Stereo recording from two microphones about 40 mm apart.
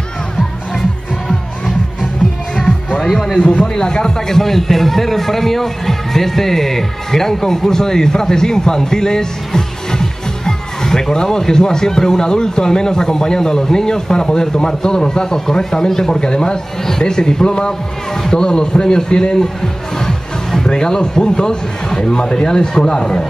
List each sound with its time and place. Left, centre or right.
3.0 s speech: centre
3.3 s a man's voice: left
4.4 s speech: centre